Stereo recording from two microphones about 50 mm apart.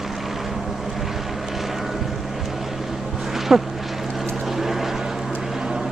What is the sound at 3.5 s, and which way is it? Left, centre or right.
Vehicle, centre.